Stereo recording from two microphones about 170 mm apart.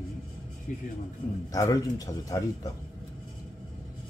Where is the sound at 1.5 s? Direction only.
20° left (ahead or behind).